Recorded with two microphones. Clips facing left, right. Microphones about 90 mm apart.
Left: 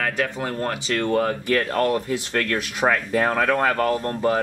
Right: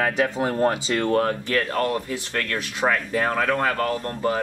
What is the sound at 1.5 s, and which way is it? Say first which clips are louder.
Speech: left 3 dB; 35° left (ahead or behind).